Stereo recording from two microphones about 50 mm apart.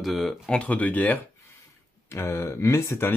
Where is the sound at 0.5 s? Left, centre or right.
Left.